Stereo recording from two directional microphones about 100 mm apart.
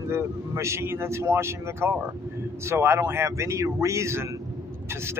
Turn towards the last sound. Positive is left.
turn(degrees=-30)  # may be behind; listen again after turning